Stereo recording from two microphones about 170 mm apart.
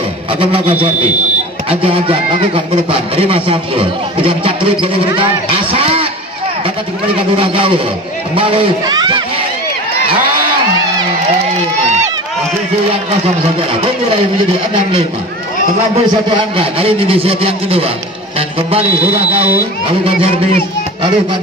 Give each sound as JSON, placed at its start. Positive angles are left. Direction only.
{"t": 0.4, "sound": "speech", "side_deg": -35}
{"t": 7.3, "sound": "speech", "side_deg": -30}
{"t": 14.1, "sound": "speech", "side_deg": -30}
{"t": 16.3, "sound": "speech", "side_deg": -30}